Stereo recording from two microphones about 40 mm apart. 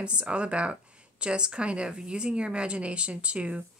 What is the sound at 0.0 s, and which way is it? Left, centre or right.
A woman's voice, right.